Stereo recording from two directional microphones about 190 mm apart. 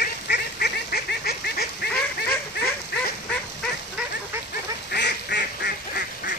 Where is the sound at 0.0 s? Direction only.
55° left (ahead or behind).